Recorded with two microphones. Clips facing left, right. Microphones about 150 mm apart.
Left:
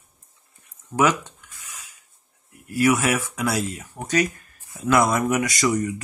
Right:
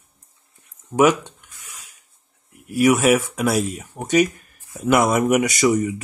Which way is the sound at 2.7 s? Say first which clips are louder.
Right 4 dB; 20° right (ahead or behind).